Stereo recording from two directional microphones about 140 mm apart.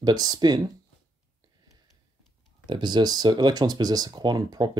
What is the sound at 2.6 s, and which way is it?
Speech, 35° right (ahead or behind).